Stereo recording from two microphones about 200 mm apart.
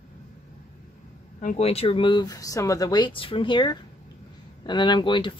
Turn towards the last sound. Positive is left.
turn(degrees=25)  # may be behind; listen again after turning